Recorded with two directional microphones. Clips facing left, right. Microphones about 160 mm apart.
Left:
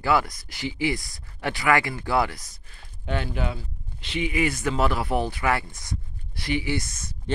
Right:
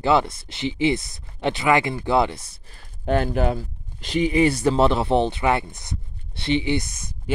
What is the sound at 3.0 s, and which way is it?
Speech, 45° right (ahead or behind).